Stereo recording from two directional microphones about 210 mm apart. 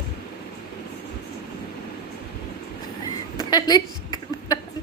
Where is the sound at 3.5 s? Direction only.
20° left (ahead or behind).